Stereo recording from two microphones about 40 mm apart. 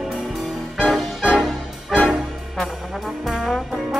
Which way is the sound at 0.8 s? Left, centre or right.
Centre.